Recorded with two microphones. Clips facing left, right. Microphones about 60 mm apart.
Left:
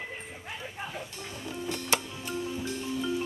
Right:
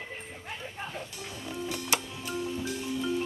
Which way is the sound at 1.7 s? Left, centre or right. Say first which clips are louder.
Left 2 dB; centre.